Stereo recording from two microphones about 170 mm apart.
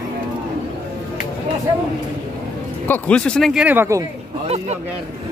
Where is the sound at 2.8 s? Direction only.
10° left (ahead or behind); by 4.0 s 15° right (ahead or behind).